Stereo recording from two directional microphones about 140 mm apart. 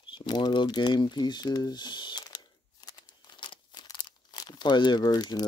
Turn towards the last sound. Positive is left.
turn(degrees=30)  # may be behind; listen again after turning